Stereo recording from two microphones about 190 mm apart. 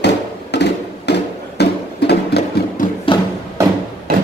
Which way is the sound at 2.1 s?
60° left (ahead or behind).